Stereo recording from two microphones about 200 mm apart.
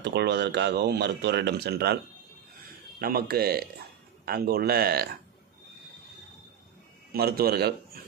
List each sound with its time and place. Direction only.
0.0 s speech: 55° right (ahead or behind)
3.0 s speech: 50° right (ahead or behind)
7.1 s a man's voice: 50° right (ahead or behind)